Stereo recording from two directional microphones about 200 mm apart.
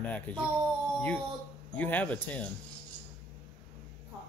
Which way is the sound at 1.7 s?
5° left (ahead or behind).